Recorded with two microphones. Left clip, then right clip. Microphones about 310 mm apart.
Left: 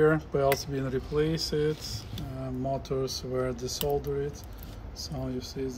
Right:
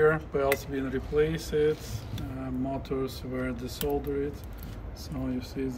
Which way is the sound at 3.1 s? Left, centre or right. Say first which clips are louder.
Left 3 dB; centre.